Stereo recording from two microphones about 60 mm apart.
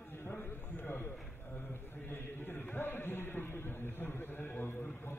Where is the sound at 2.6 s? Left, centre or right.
Left.